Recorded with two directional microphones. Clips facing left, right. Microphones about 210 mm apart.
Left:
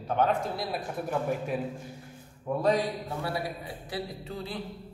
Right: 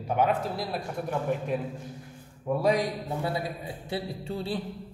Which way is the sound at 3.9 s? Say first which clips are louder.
Right 3 dB; 30° right (ahead or behind).